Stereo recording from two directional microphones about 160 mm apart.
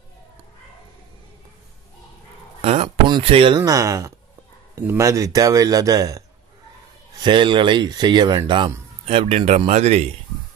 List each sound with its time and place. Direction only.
2.6 s a man's voice: 40° right (ahead or behind); by 6.2 s 20° right (ahead or behind)
7.2 s speech: 30° right (ahead or behind)